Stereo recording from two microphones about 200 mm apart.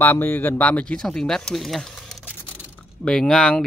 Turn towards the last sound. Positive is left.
turn(degrees=5)  # may be behind; listen again after turning